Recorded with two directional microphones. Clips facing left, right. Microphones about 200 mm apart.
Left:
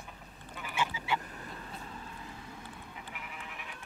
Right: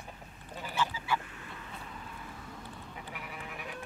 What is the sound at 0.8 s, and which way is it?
Duck, 20° left (ahead or behind).